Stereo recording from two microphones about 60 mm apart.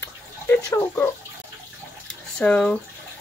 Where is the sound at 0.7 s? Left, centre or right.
Left.